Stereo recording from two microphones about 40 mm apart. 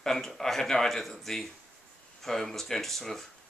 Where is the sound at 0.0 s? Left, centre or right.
Centre.